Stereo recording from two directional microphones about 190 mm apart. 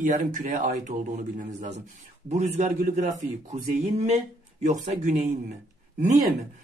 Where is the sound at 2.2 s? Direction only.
35° right (ahead or behind).